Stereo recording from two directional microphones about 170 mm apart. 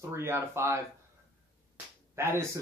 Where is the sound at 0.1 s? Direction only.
15° right (ahead or behind).